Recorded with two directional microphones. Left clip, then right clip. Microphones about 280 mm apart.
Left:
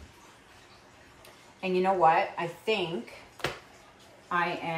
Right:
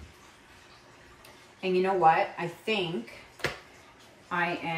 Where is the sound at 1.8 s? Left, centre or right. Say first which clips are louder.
Even; centre.